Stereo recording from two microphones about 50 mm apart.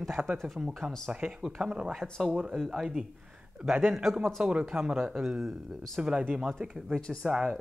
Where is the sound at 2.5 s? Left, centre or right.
Centre.